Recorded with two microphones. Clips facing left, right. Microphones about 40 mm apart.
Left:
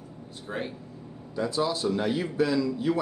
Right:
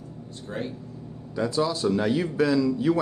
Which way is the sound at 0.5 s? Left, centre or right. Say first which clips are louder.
Right 1 dB; centre.